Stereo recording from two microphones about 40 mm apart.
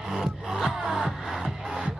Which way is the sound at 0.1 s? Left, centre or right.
Centre.